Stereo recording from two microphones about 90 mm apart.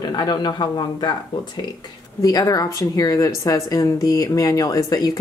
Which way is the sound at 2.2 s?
40° left (ahead or behind).